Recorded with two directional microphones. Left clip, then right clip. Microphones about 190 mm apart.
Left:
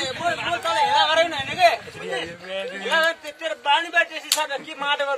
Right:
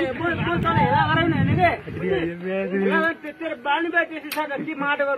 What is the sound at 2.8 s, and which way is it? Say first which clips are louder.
Speech: left 4 dB; 45° left (ahead or behind).